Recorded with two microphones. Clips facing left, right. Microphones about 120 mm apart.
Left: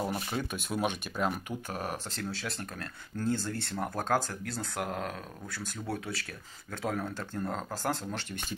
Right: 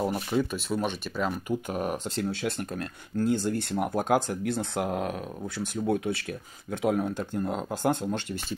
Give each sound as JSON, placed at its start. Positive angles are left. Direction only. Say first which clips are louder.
{"t": 0.1, "sound": "speech", "louder": "right 7 dB", "side_deg": 0}
{"t": 1.7, "sound": "speech", "louder": "right 6 dB", "side_deg": -20}